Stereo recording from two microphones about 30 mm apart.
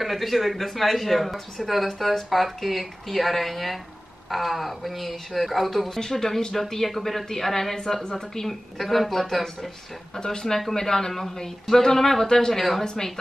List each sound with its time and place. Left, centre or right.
0.0 s speech: centre
5.9 s a woman's voice: centre
8.5 s speech: centre
10.1 s speech: centre
12.5 s speech: centre
12.8 s speech: centre